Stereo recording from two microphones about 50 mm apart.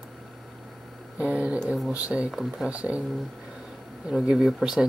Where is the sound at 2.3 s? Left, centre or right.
Centre.